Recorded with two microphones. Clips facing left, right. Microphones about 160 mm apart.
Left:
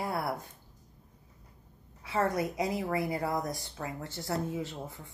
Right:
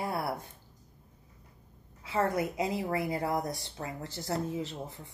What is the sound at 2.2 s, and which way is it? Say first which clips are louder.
Speech: even; 25° right (ahead or behind).